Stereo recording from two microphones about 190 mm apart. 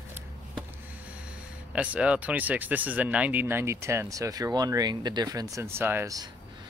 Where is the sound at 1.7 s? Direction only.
5° right (ahead or behind).